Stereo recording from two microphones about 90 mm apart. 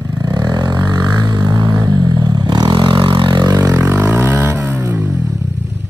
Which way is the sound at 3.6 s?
30° right (ahead or behind).